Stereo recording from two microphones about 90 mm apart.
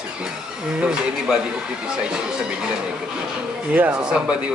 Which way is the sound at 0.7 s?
10° right (ahead or behind).